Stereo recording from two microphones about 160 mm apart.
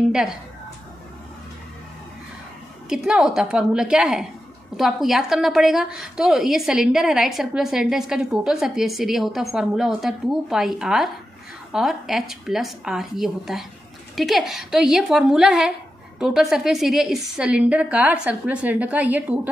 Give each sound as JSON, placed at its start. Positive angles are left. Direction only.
{"t": 2.9, "sound": "a woman's voice", "side_deg": -5}